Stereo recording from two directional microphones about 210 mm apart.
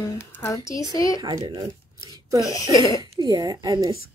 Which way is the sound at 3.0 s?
20° right (ahead or behind).